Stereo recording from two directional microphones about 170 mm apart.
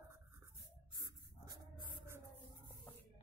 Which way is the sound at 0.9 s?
20° right (ahead or behind).